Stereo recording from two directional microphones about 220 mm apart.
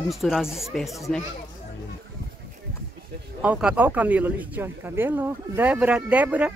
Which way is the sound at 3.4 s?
5° right (ahead or behind).